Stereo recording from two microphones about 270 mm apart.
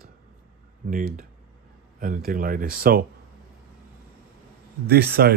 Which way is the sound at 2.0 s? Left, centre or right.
Right.